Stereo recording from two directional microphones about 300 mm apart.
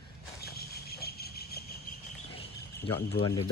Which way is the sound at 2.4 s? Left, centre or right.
Centre.